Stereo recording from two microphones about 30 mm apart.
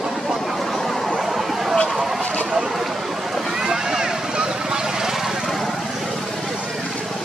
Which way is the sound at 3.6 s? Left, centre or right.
Right.